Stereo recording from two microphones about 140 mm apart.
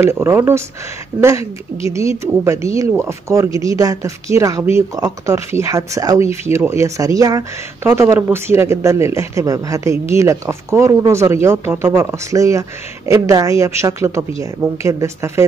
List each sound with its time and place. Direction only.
0.0 s speech: 20° right (ahead or behind)